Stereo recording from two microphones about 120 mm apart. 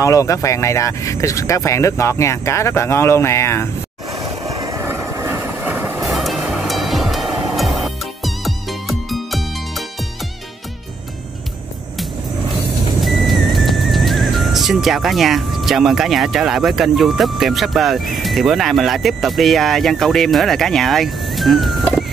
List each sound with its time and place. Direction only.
0.0 s speech: 25° left (ahead or behind)
4.1 s vehicle: 30° right (ahead or behind)
6.0 s music: centre (ahead or behind)
13.0 s speech: centre (ahead or behind)